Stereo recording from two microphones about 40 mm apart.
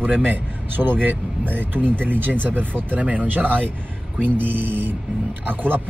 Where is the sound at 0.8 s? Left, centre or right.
Right.